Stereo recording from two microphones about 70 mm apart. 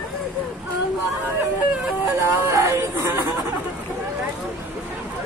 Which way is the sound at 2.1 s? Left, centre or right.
Right.